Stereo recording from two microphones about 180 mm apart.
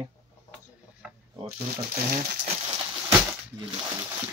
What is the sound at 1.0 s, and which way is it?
Ratchet, 5° right (ahead or behind).